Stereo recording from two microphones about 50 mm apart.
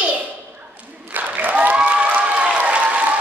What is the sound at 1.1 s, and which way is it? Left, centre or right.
Applause, right.